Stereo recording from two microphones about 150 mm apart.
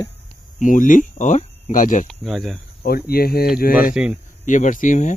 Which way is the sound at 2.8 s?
90° left.